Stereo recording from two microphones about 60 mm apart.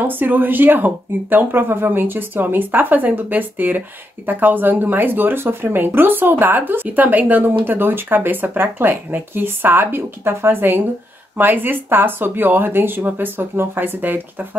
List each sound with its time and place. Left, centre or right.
0.0 s speech: right